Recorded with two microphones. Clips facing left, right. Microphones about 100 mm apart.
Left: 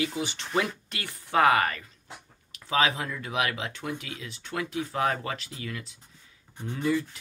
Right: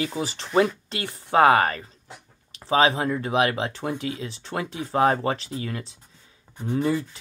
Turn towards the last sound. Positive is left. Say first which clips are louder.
# right 4 dB
turn(degrees=-30)  # may be behind; listen again after turning